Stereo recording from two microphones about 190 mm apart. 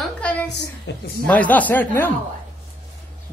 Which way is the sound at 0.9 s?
60° left (ahead or behind).